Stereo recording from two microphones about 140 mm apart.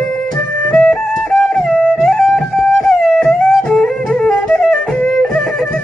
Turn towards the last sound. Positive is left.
turn(degrees=5)  # may be behind; listen again after turning